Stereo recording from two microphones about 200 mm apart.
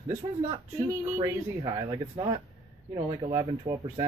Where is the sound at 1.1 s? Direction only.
15° right (ahead or behind).